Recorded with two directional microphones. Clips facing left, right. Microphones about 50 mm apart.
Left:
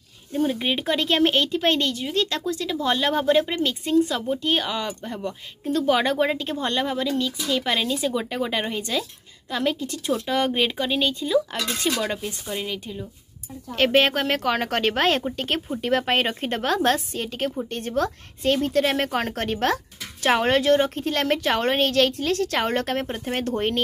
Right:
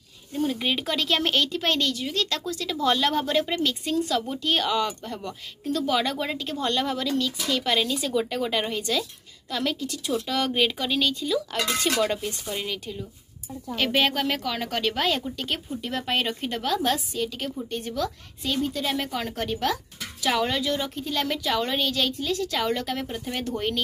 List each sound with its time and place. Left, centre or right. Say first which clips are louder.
0.3 s speech: left 3 dB; left
12.0 s speech: right 2 dB; centre
13.7 s a woman's voice: left 4 dB; left
16.2 s a woman's voice: left 3 dB; left
17.6 s speech: left 2 dB; left
18.7 s speech: left 6 dB; left